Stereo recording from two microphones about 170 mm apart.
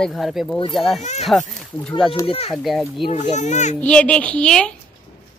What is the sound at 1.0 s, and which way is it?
Speech, 40° left (ahead or behind).